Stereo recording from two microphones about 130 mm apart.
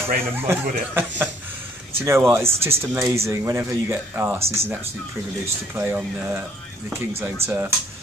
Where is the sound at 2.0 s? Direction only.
20° right (ahead or behind).